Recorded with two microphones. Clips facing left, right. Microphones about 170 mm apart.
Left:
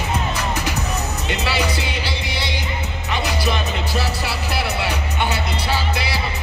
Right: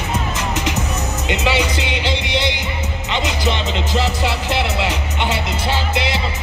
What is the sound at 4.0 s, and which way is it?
Music, 20° right (ahead or behind).